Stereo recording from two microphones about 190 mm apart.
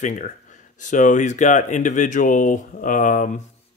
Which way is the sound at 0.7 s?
40° left (ahead or behind).